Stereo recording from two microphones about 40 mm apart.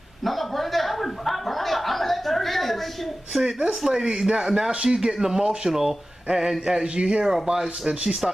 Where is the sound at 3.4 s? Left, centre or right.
Right.